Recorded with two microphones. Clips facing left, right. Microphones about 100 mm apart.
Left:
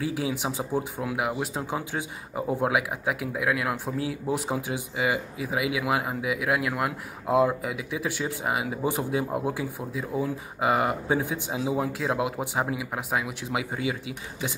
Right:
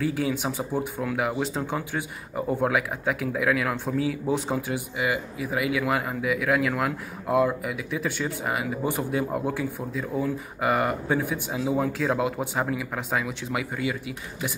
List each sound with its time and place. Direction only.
0.1 s speech: 15° left (ahead or behind)
4.6 s speech: 20° left (ahead or behind)
7.2 s speech: 25° left (ahead or behind)
11.7 s speech: 10° left (ahead or behind)